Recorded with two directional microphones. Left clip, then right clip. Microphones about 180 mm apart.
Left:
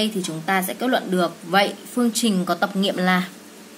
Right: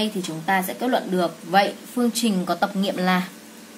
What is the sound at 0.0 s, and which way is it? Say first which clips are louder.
A woman's voice: left 1 dB; 15° left (ahead or behind).